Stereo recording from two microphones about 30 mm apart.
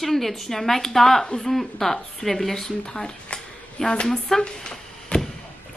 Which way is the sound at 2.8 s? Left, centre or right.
Left.